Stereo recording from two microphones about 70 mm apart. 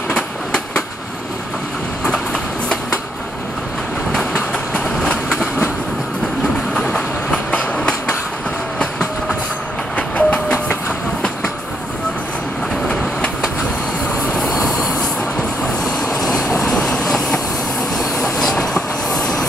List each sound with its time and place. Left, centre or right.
0.1 s train: centre
4.1 s train: centre
6.7 s train: centre
9.9 s train: centre
12.8 s train: centre
14.3 s vehicle: centre
17.9 s train: centre